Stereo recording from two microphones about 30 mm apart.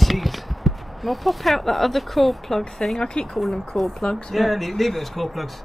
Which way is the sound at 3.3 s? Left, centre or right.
Centre.